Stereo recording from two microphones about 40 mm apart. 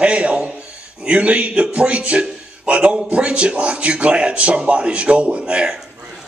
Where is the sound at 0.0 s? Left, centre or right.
Right.